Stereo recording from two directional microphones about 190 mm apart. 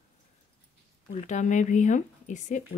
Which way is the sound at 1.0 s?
40° left (ahead or behind).